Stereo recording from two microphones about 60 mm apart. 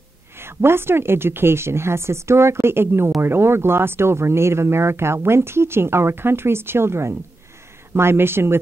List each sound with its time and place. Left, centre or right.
0.4 s speech: right